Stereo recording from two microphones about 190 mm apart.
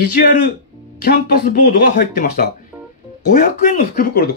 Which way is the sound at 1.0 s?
50° left (ahead or behind).